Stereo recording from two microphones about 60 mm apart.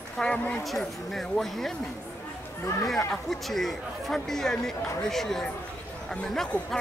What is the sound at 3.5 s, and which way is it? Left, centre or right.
Speech, centre.